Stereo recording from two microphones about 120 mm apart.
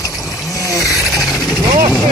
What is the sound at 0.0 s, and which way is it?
Water, 30° left (ahead or behind).